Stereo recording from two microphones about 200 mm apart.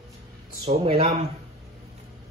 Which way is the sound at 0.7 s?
30° right (ahead or behind).